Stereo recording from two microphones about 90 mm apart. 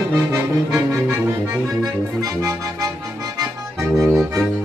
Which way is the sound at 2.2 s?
40° right (ahead or behind).